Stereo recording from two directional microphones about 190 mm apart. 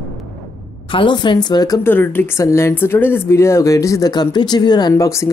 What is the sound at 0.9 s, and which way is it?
Speech, 25° left (ahead or behind).